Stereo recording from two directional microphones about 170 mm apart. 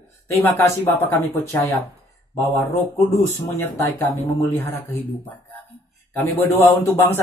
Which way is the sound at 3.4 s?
15° left (ahead or behind).